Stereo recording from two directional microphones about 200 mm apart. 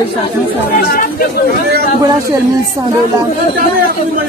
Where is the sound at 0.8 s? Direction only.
50° left (ahead or behind).